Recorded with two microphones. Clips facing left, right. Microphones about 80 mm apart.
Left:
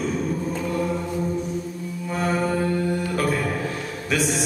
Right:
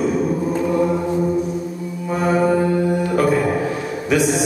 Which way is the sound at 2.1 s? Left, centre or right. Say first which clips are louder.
Right 7 dB; centre.